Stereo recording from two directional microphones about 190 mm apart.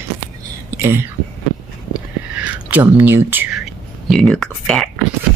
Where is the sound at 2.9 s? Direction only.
10° right (ahead or behind).